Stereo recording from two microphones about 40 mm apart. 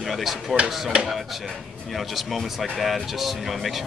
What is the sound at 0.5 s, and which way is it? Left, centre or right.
Speech, right.